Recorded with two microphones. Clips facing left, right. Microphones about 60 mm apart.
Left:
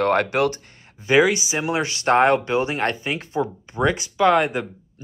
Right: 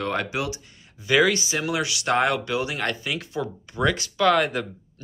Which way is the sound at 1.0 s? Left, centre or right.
Left.